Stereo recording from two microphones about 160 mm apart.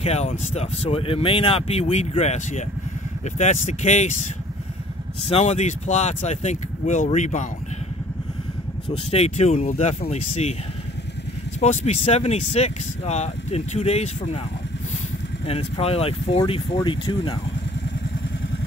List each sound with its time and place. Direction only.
0.0 s speech: 40° left (ahead or behind)
8.8 s speech: 40° left (ahead or behind)
11.6 s speech: 40° left (ahead or behind)
15.4 s speech: 40° left (ahead or behind)